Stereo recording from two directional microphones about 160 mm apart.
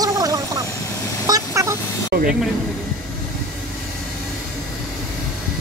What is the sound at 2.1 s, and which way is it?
Speech, 75° right (ahead or behind).